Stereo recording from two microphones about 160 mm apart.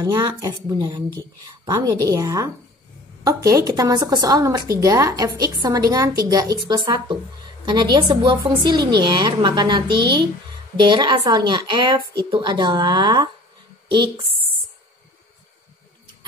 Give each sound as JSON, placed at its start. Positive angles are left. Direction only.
{"t": 0.0, "sound": "a woman's voice", "side_deg": -25}